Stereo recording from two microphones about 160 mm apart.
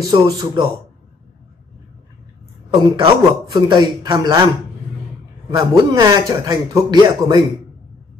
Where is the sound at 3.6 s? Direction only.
25° right (ahead or behind).